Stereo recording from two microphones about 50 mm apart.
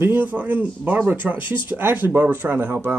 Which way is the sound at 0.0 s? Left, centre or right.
Right.